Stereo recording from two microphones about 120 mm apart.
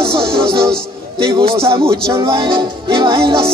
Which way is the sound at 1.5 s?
50° right (ahead or behind).